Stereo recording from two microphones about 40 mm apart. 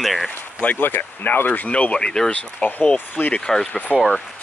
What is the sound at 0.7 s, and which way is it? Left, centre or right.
Speech, left.